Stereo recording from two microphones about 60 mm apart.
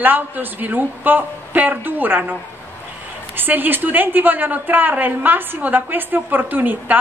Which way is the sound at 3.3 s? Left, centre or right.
Right.